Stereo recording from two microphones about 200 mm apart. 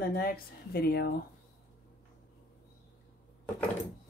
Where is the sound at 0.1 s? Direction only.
50° left (ahead or behind).